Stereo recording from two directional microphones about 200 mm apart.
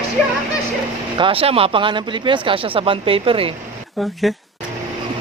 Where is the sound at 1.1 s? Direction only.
25° right (ahead or behind).